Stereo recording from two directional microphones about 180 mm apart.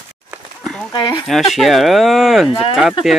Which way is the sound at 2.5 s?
30° left (ahead or behind).